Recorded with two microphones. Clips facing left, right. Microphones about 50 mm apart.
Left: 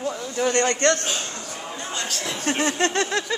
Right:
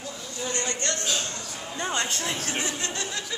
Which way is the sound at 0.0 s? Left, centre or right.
Left.